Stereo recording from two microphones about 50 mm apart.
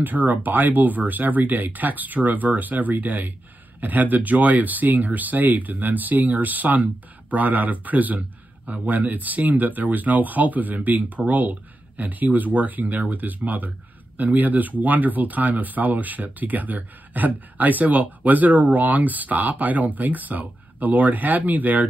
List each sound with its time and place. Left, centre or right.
0.0 s speech: right